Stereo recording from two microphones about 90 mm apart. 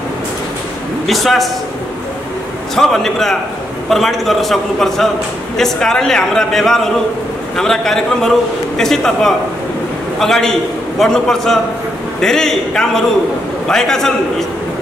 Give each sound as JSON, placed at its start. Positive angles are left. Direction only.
{"t": 1.0, "sound": "a man's voice", "side_deg": 0}
{"t": 2.7, "sound": "a man's voice", "side_deg": 5}